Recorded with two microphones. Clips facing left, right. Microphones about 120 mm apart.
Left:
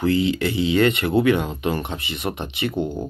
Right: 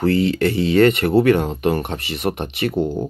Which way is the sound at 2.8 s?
30° right (ahead or behind).